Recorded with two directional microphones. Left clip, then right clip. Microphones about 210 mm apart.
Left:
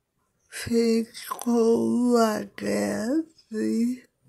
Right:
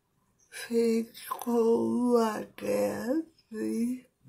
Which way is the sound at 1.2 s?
40° left (ahead or behind).